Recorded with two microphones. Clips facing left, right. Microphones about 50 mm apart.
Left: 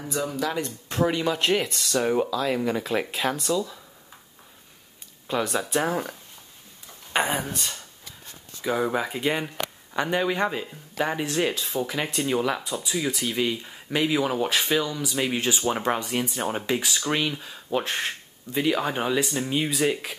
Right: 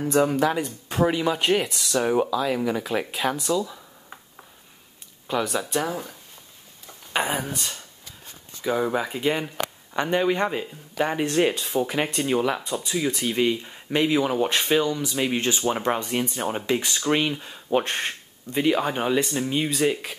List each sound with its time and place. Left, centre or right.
0.1 s speech: right
0.6 s speech: centre
5.3 s speech: centre
5.9 s speech: left
7.1 s speech: centre
12.1 s speech: centre